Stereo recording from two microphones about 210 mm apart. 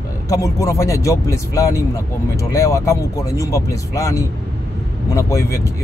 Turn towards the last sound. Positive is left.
turn(degrees=15)  # may be behind; listen again after turning